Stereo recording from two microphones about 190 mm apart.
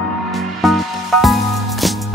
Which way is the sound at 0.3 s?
Centre (ahead or behind).